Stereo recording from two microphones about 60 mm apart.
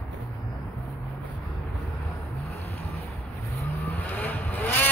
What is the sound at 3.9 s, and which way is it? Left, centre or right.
Vehicle, left.